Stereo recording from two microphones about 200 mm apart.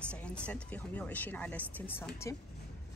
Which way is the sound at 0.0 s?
5° left (ahead or behind).